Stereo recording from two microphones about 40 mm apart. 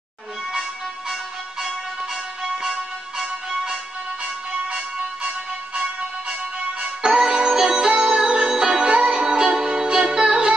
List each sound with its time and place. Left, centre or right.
0.5 s music: centre
4.6 s music: right
6.8 s music: centre